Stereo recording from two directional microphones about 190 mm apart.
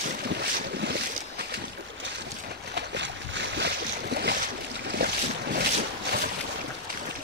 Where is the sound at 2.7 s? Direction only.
70° right (ahead or behind).